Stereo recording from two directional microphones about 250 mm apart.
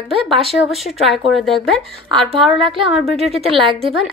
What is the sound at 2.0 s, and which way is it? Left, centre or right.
Speech, right.